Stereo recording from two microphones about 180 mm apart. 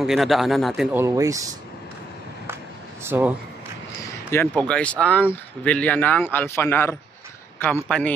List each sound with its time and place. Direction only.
0.0 s a man's voice: centre (ahead or behind)
0.9 s speech: 15° right (ahead or behind)
3.0 s speech: 15° right (ahead or behind)
4.3 s speech: 10° left (ahead or behind)